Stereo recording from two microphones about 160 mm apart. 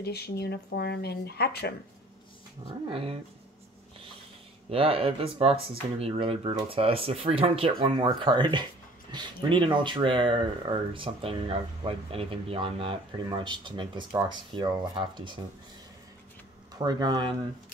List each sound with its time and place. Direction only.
0.0 s speech: 80° left
2.9 s speech: 35° right (ahead or behind)
4.6 s speech: 35° right (ahead or behind)
16.7 s speech: 25° right (ahead or behind)